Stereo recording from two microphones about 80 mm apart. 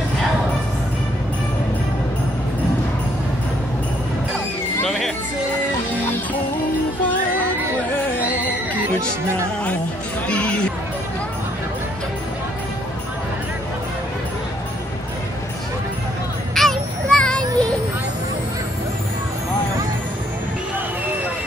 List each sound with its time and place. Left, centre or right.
4.8 s music: centre
10.2 s chatter: centre
16.5 s a sound: centre